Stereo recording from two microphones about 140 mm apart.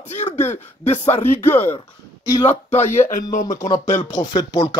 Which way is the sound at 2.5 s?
55° left (ahead or behind).